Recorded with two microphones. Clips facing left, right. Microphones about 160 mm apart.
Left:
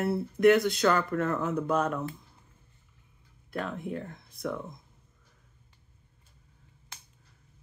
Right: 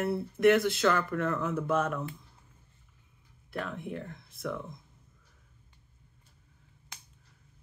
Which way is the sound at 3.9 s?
45° left (ahead or behind).